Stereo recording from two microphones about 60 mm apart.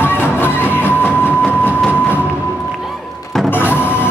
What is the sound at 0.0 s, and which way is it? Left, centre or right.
Music, left.